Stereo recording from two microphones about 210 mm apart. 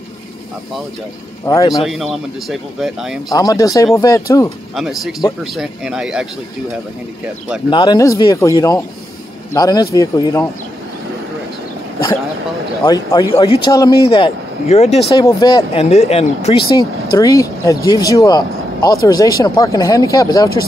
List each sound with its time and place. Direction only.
1.4 s speech: 15° left (ahead or behind)
1.8 s speech: centre (ahead or behind)
3.3 s speech: 15° left (ahead or behind)
4.7 s speech: centre (ahead or behind)
7.7 s speech: 20° left (ahead or behind)
12.8 s speech: 15° left (ahead or behind)
14.7 s speech: 30° left (ahead or behind)
15.2 s speech: 20° left (ahead or behind)
15.8 s speech: 30° left (ahead or behind)
16.7 s speech: 15° left (ahead or behind)